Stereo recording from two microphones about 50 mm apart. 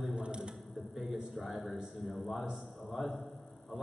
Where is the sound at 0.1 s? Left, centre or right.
Centre.